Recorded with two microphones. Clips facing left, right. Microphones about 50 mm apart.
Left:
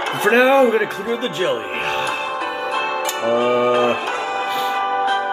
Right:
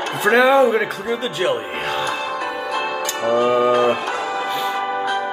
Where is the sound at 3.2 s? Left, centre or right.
Centre.